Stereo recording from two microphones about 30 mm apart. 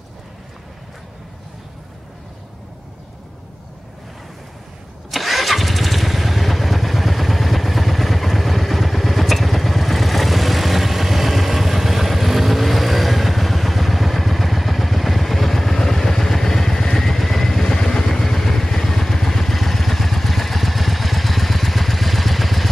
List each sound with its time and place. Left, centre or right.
5.1 s vehicle: centre
17.6 s vehicle: centre